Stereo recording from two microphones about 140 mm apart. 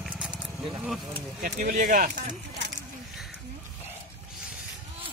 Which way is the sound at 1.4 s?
80° right.